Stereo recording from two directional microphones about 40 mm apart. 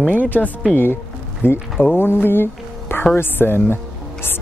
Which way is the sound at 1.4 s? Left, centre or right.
Left.